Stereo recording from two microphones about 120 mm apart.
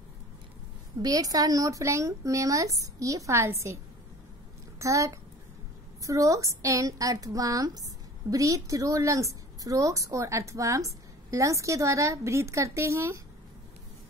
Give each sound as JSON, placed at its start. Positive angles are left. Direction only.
{"t": 1.0, "sound": "a woman's voice", "side_deg": -30}